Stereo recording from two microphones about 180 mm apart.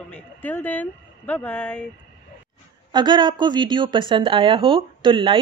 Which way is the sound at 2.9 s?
25° right (ahead or behind).